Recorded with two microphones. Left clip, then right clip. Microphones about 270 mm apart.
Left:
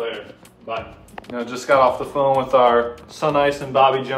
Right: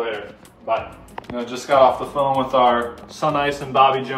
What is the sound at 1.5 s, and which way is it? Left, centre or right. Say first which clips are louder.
Speech: right 1 dB; centre.